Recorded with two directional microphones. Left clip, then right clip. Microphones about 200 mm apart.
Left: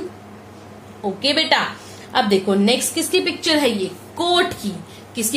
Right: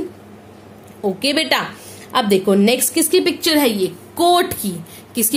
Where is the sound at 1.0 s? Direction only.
45° right (ahead or behind).